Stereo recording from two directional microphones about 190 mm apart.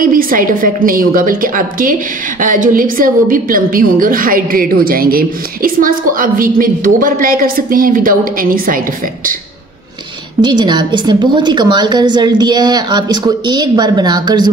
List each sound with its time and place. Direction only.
0.0 s a woman's voice: 45° right (ahead or behind)
10.4 s a woman's voice: 25° right (ahead or behind)